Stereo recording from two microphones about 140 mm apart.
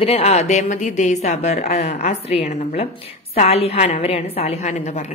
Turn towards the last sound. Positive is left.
turn(degrees=50)  # may be behind; listen again after turning